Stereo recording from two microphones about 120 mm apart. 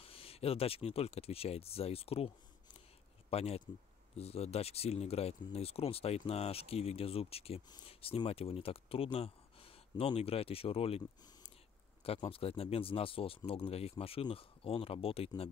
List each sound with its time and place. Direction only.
0.0 s speech: 55° left (ahead or behind)
12.0 s speech: 55° left (ahead or behind)